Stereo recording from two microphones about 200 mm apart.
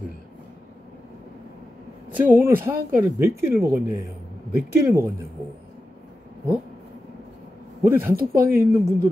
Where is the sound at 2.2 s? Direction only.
10° right (ahead or behind).